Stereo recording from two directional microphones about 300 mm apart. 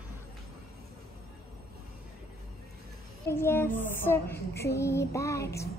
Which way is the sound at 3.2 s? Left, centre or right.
Centre.